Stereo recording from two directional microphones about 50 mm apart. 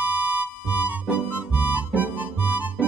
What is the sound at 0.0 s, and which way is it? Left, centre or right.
Music, right.